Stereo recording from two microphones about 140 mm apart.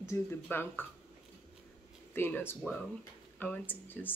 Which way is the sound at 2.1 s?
15° left (ahead or behind).